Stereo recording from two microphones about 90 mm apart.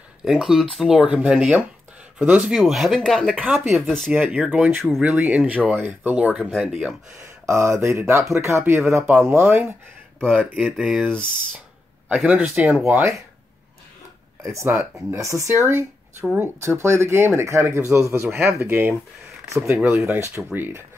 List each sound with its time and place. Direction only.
0.2 s speech: 5° right (ahead or behind)
2.4 s speech: centre (ahead or behind)
4.1 s speech: 15° right (ahead or behind)
6.5 s speech: centre (ahead or behind)
7.4 s speech: 30° right (ahead or behind)
10.5 s speech: 10° right (ahead or behind)
12.3 s speech: 15° right (ahead or behind)
12.7 s speech: 25° right (ahead or behind)
14.4 s speech: 30° right (ahead or behind)